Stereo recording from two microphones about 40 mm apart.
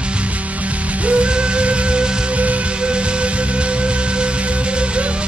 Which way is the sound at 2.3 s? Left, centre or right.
Right.